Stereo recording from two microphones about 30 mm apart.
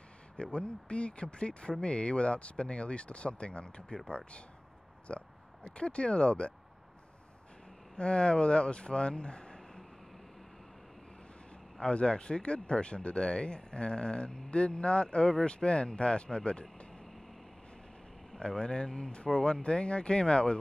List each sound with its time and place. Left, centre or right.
0.4 s speech: left
5.0 s oink: left
5.7 s speech: left
7.9 s speech: left
11.8 s speech: left
18.4 s speech: left